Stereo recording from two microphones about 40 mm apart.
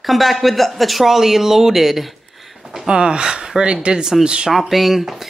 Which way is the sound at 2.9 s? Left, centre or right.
Right.